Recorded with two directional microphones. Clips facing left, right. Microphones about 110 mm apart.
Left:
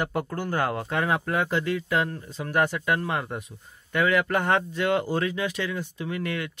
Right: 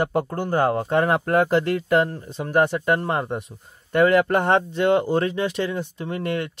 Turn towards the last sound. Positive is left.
turn(degrees=-35)  # may be behind; listen again after turning